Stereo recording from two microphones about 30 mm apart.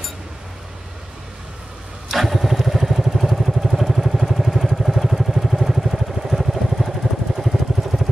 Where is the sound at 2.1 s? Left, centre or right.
Centre.